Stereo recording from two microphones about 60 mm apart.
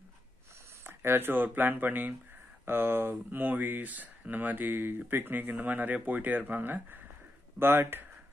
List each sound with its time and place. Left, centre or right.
0.8 s speech: right